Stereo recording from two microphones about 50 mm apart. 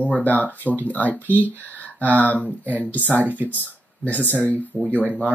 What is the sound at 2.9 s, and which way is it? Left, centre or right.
Speech, left.